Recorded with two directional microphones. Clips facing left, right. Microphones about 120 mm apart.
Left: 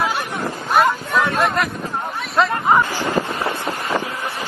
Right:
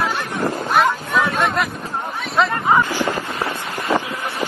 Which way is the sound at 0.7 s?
Centre (ahead or behind).